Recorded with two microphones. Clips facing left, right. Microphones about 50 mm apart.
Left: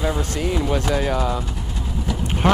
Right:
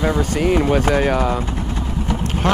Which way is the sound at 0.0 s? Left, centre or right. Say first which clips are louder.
Right 5 dB; right.